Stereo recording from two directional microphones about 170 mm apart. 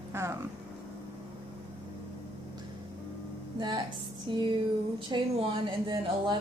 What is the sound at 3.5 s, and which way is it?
Speech, 25° right (ahead or behind).